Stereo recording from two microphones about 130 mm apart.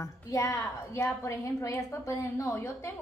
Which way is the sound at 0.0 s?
25° left (ahead or behind).